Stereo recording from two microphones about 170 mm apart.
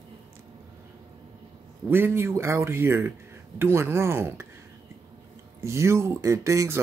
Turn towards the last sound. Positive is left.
turn(degrees=-15)  # may be behind; listen again after turning